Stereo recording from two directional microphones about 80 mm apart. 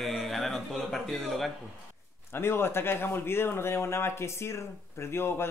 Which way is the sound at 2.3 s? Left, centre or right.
Left.